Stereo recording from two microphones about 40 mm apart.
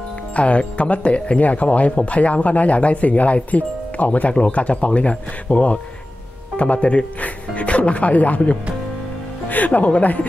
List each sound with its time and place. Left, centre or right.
0.4 s speech: left